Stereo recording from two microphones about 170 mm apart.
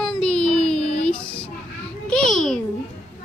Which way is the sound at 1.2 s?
30° left (ahead or behind).